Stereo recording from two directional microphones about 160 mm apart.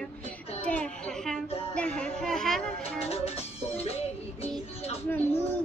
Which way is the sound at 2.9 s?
40° left (ahead or behind).